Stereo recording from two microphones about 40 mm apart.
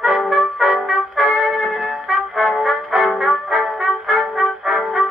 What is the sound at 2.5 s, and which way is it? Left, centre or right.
Brass instrument, centre.